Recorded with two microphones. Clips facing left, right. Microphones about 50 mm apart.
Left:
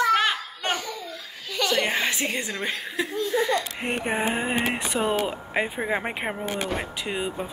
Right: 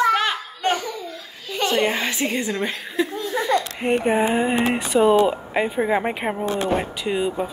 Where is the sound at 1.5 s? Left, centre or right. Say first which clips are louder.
Right 4 dB; right.